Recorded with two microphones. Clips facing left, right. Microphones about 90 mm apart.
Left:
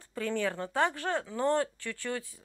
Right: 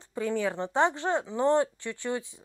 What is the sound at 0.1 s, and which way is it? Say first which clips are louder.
Speech: right 3 dB; 15° right (ahead or behind).